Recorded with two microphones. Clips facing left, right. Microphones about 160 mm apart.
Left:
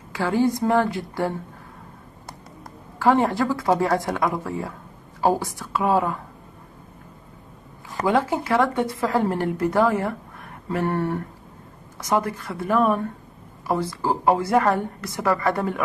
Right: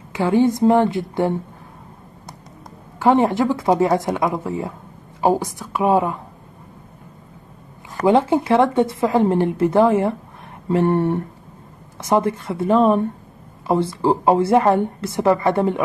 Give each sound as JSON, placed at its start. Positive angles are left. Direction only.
{"t": 0.1, "sound": "a woman's voice", "side_deg": -20}
{"t": 3.0, "sound": "a woman's voice", "side_deg": -20}
{"t": 8.1, "sound": "a woman's voice", "side_deg": -25}